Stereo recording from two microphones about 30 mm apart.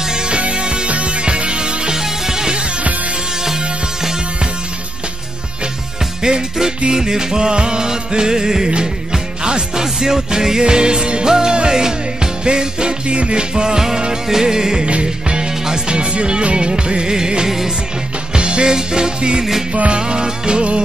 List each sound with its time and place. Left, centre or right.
0.0 s music: right
0.3 s music: right
0.8 s music: right
2.0 s music: centre
6.2 s music: right
14.9 s music: right
15.3 s music: right